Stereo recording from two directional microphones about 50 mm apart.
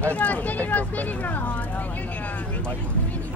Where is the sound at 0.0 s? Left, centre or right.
Left.